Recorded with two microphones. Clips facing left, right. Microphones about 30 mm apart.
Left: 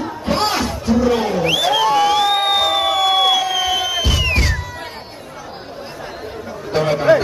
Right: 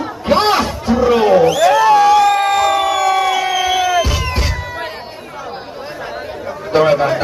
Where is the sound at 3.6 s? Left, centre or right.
Right.